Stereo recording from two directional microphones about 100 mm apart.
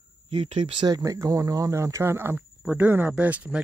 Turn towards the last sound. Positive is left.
turn(degrees=-15)  # may be behind; listen again after turning